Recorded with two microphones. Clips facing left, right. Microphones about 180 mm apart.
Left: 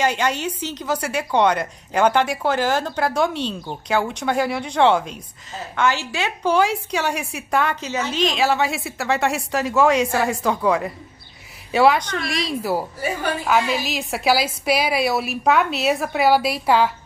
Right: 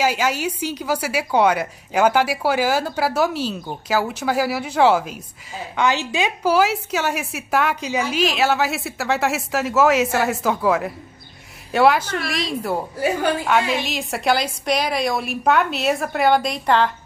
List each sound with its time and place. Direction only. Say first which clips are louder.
0.0 s a woman's voice: right 1 dB; 5° right (ahead or behind)
6.4 s a woman's voice: even; 5° right (ahead or behind)